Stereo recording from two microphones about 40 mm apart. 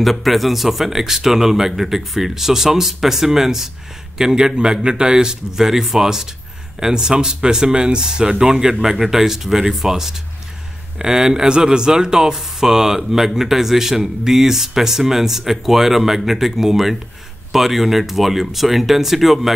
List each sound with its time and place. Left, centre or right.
0.0 s a man's voice: centre
5.6 s speech: centre